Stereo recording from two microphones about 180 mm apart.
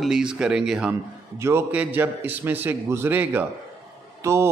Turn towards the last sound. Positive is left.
turn(degrees=-15)  # may be behind; listen again after turning